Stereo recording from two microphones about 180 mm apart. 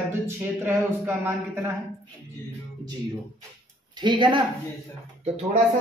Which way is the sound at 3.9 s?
25° right (ahead or behind).